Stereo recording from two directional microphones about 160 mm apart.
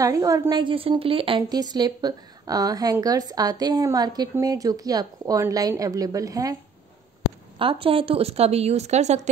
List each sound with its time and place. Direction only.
0.0 s a woman's voice: 20° right (ahead or behind)
7.5 s a woman's voice: 35° right (ahead or behind)